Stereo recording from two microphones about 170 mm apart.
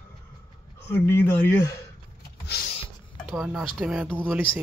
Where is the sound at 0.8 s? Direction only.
15° left (ahead or behind).